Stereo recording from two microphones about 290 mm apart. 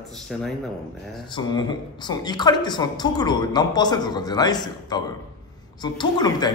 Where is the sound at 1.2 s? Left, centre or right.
Centre.